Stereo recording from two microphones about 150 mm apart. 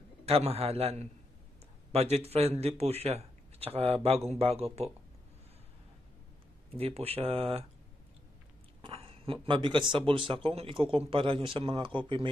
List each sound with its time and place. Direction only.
0.2 s a man's voice: 45° right (ahead or behind)
6.8 s speech: 40° right (ahead or behind)
8.8 s speech: 40° right (ahead or behind)